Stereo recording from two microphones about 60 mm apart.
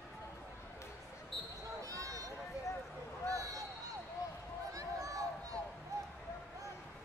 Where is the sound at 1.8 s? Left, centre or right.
Right.